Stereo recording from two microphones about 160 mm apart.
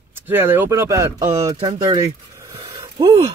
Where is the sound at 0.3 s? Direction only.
15° right (ahead or behind).